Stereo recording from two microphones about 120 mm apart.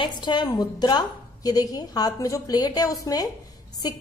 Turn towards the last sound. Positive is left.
turn(degrees=35)  # may be behind; listen again after turning